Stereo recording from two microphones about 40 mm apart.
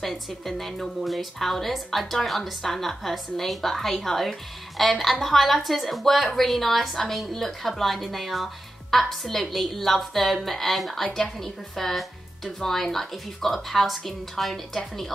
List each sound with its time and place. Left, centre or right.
0.0 s a woman's voice: centre